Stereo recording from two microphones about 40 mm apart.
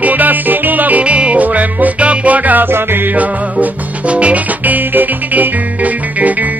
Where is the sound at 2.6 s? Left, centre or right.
Right.